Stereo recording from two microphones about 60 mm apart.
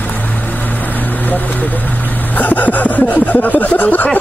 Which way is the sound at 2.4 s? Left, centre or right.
Left.